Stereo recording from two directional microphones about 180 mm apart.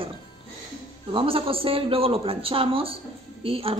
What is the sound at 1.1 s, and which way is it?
A woman's voice, 30° right (ahead or behind).